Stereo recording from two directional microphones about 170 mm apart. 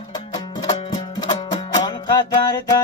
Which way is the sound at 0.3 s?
25° left (ahead or behind).